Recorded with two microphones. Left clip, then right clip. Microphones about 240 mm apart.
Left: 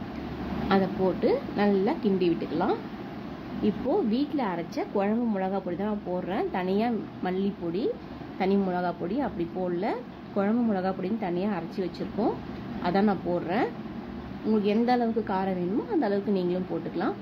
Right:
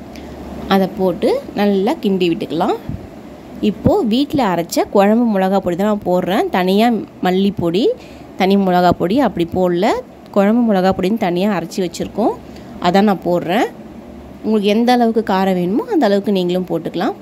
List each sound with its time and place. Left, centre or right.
0.7 s a woman's voice: right